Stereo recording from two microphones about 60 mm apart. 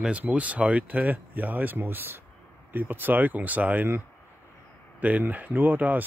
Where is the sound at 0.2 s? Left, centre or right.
Right.